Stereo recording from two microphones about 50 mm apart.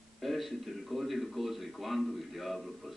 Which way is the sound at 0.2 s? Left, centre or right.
Centre.